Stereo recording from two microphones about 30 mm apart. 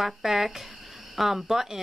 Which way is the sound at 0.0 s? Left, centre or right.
Centre.